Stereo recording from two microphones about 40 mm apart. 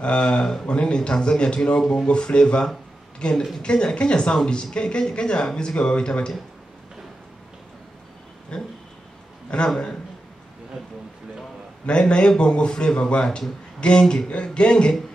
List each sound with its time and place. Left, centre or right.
0.0 s speech: left
2.0 s speech: left
8.5 s speech: left
11.9 s speech: left